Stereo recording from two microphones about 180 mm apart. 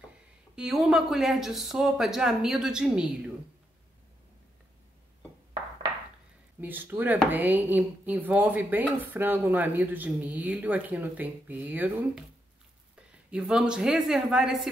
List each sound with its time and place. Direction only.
0.6 s speech: centre (ahead or behind)
6.6 s speech: 10° right (ahead or behind)
13.3 s speech: 5° right (ahead or behind)